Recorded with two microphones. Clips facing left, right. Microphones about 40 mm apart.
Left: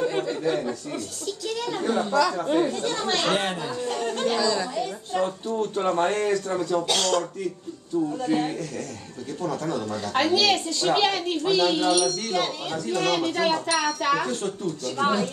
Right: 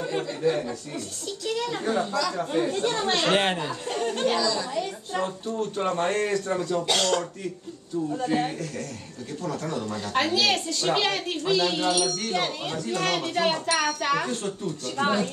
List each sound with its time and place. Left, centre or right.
0.0 s a woman's voice: centre
2.7 s speech: centre
3.9 s speech: centre
4.4 s a woman's voice: centre
4.7 s speech: centre